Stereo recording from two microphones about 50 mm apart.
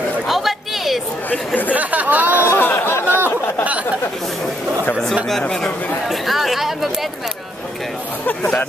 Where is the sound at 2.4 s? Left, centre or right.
Left.